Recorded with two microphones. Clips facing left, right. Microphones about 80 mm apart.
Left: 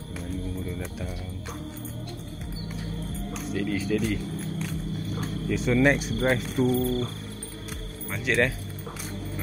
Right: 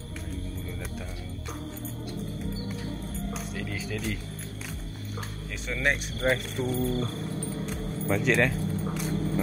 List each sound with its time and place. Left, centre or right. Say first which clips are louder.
3.3 s a sound: left 6 dB; centre
5.5 s speech: left 7 dB; centre
6.8 s cricket: left 2 dB; right
8.1 s speech: right 1 dB; centre